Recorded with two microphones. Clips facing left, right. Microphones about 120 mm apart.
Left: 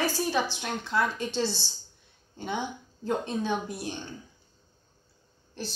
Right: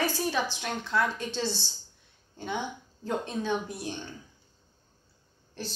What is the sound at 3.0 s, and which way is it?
Speech, 15° left (ahead or behind).